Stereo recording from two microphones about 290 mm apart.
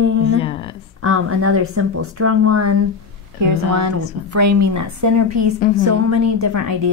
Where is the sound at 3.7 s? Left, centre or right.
Right.